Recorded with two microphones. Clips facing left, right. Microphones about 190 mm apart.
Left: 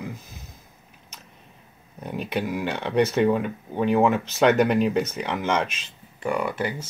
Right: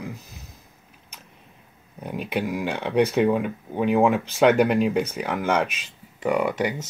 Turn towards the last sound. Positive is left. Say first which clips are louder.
# right 3 dB
turn(degrees=-15)  # may be behind; listen again after turning